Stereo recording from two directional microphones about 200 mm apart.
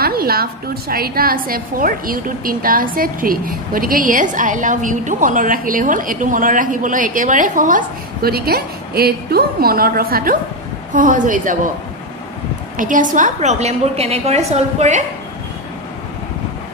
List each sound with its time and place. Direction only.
0.0 s a woman's voice: 50° right (ahead or behind)
12.7 s a woman's voice: 40° right (ahead or behind)